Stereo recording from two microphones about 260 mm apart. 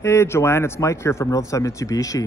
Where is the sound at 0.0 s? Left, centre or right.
Centre.